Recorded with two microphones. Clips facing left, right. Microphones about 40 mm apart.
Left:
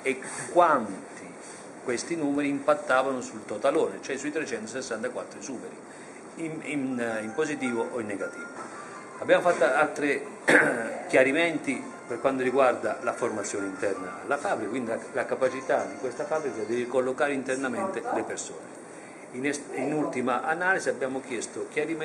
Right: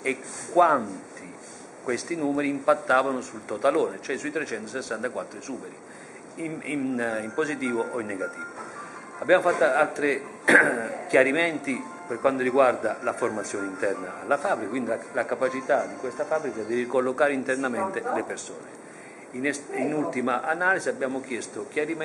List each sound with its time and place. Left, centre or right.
0.0 s a man's voice: centre
20.1 s a man's voice: centre